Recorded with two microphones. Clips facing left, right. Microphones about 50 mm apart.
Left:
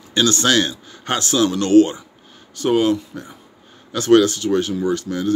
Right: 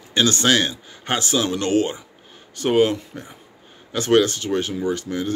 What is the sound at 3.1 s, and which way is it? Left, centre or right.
Speech, centre.